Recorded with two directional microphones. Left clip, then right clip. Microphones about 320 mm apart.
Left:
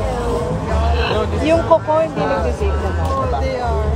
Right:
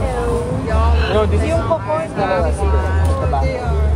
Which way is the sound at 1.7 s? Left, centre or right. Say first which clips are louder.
Left 7 dB; left.